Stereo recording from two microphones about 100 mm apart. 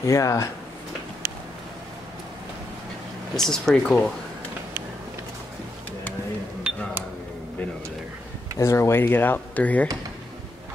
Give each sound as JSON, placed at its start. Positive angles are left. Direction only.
{"t": 0.0, "sound": "speech", "side_deg": 30}
{"t": 3.3, "sound": "speech", "side_deg": 5}
{"t": 6.7, "sound": "cash register", "side_deg": -10}
{"t": 8.5, "sound": "speech", "side_deg": 30}